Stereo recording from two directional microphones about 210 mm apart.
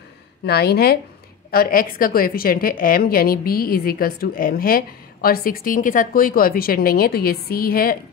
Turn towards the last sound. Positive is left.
turn(degrees=45)  # may be behind; listen again after turning